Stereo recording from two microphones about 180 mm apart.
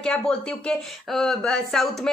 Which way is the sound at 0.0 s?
5° left (ahead or behind).